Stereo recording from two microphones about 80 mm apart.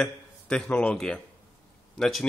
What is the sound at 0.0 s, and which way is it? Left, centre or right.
A man's voice, centre.